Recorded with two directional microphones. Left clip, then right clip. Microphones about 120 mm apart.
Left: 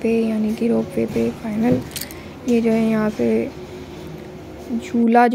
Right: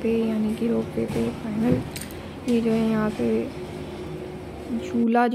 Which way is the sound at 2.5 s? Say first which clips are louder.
Left 5 dB; 30° left (ahead or behind).